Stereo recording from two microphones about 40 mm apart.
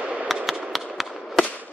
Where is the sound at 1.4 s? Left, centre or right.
Centre.